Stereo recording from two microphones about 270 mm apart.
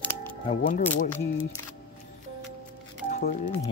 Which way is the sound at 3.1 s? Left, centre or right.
Left.